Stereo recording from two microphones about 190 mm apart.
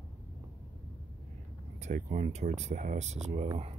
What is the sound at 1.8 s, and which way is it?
Speech, 35° right (ahead or behind).